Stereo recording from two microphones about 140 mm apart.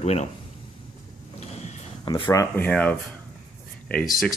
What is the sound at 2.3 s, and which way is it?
Speech, 15° left (ahead or behind).